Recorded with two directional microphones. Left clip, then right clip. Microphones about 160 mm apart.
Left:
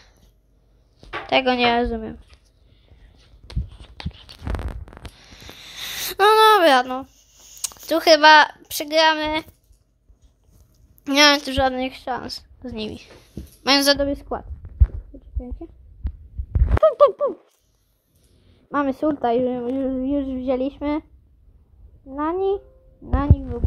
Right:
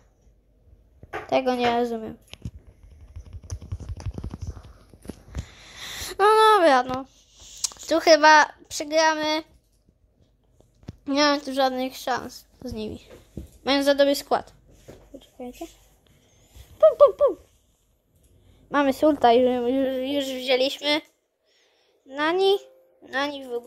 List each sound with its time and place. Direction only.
1.2 s a woman's voice: 5° right (ahead or behind)
5.4 s a sound: 5° left (ahead or behind)
11.1 s a woman's voice: 5° left (ahead or behind)
13.9 s a woman's voice: 10° right (ahead or behind)
15.1 s a sound: 5° right (ahead or behind)
16.8 s speech: centre (ahead or behind)
18.7 s a woman's voice: 10° right (ahead or behind)
22.1 s a woman's voice: 15° right (ahead or behind)